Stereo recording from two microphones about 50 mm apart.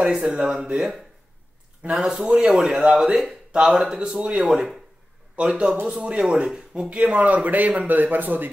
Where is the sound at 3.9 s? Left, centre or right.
Centre.